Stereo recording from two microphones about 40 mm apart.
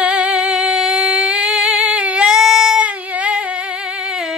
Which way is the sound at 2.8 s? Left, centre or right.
Right.